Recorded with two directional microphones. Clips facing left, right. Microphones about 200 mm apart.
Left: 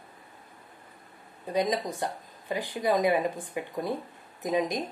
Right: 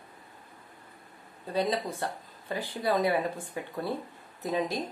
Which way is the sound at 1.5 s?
15° left (ahead or behind).